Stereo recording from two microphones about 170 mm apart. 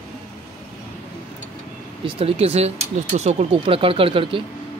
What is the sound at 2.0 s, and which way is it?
Speech, 35° right (ahead or behind).